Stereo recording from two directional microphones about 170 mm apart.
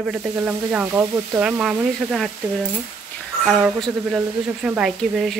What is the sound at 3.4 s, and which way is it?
Speech, 5° right (ahead or behind).